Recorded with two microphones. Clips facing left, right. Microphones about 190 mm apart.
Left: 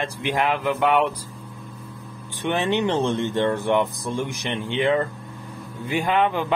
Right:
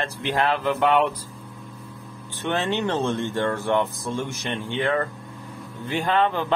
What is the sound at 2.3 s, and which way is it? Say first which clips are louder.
Speech: left 2 dB; 15° left (ahead or behind).